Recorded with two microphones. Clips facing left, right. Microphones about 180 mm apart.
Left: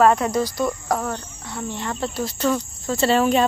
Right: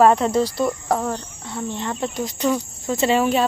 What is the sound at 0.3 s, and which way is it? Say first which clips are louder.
Speech: right 2 dB; 30° right (ahead or behind).